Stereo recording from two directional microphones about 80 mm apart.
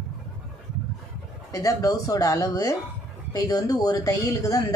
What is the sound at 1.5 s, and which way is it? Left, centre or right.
Speech, left.